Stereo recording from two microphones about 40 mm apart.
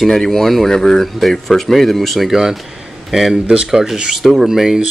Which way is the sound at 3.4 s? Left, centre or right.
Right.